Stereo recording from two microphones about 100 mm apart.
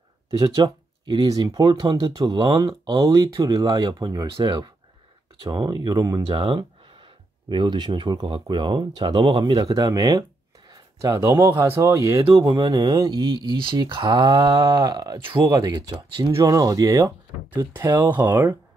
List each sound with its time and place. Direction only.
0.4 s speech: 40° right (ahead or behind)
2.2 s speech: 50° right (ahead or behind)
3.0 s speech: 35° right (ahead or behind)
6.2 s speech: 60° right (ahead or behind)
9.6 s speech: 40° right (ahead or behind)
10.7 s a sound: 40° right (ahead or behind)
11.1 s speech: 25° right (ahead or behind)
12.4 s speech: 50° right (ahead or behind)
17.8 s speech: 45° right (ahead or behind)
18.1 s speech: 20° right (ahead or behind)